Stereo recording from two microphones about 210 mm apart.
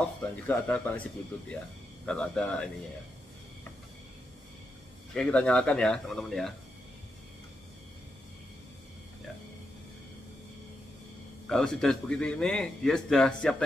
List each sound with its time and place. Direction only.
0.5 s speech: 10° left (ahead or behind)
2.0 s a man's voice: 5° left (ahead or behind)
5.1 s a man's voice: 5° left (ahead or behind)
11.4 s a man's voice: centre (ahead or behind)